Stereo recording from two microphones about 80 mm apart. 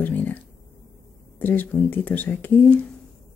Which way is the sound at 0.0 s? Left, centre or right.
Left.